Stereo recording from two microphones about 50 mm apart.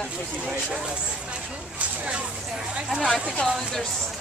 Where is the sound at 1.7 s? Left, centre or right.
Right.